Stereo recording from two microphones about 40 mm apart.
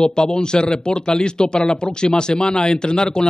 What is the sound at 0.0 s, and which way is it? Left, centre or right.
A man's voice, left.